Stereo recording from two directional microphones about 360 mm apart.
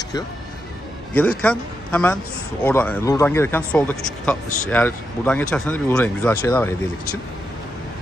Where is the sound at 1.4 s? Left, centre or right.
Centre.